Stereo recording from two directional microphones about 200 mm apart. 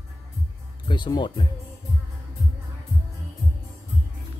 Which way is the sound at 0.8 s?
25° left (ahead or behind).